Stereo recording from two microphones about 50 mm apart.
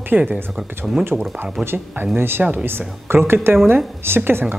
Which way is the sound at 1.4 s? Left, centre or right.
Right.